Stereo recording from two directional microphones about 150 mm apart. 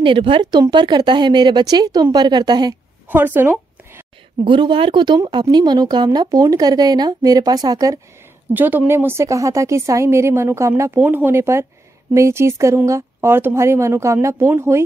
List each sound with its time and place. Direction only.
0.0 s speech: 35° right (ahead or behind)
3.1 s a sound: 15° right (ahead or behind)
4.5 s speech: 35° right (ahead or behind)
8.5 s speech: 15° right (ahead or behind)